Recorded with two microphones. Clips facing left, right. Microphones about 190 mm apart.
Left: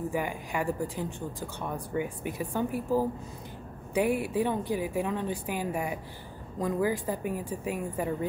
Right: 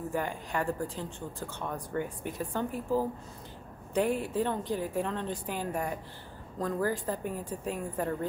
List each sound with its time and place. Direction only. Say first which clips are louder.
0.1 s speech: left 1 dB; 10° left (ahead or behind)